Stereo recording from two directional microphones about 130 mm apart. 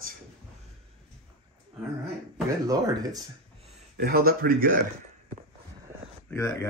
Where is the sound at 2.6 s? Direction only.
30° right (ahead or behind).